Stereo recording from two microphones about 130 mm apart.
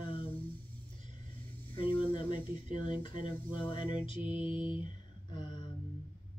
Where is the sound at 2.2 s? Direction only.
40° left (ahead or behind).